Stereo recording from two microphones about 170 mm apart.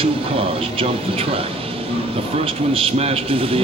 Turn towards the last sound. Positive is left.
turn(degrees=-35)  # may be behind; listen again after turning